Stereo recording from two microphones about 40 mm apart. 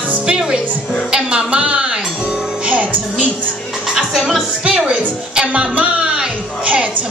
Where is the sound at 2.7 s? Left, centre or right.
Right.